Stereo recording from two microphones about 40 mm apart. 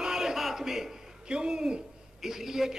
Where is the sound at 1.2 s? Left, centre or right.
Right.